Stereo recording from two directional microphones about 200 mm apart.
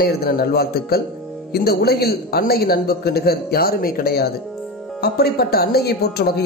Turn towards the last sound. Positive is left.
turn(degrees=55)  # may be behind; listen again after turning